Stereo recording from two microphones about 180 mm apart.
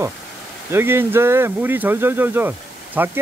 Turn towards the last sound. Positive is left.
turn(degrees=-10)  # may be behind; listen again after turning